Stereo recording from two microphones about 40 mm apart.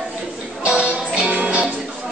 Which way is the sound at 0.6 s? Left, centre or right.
Right.